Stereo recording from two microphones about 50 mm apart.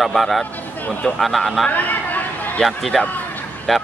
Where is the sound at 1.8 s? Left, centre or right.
Left.